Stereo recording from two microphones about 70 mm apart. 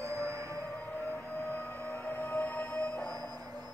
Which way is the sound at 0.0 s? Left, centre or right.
Right.